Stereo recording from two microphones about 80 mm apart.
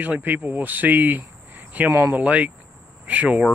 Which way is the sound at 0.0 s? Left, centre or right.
Right.